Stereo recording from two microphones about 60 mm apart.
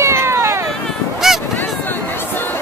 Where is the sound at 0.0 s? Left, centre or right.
Right.